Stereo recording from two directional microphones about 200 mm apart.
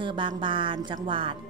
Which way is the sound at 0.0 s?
25° right (ahead or behind).